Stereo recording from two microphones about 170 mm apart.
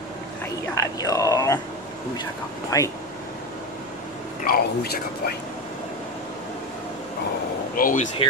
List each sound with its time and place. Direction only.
0.7 s speech: 20° left (ahead or behind)
2.7 s speech: 20° left (ahead or behind)
4.5 s speech: 65° left (ahead or behind)
7.7 s speech: 50° left (ahead or behind)